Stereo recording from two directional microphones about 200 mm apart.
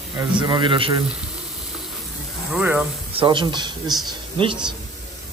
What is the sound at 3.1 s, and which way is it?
A man's voice, 25° right (ahead or behind).